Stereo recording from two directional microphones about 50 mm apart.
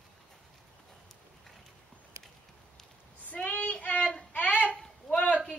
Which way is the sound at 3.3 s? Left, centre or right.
Left.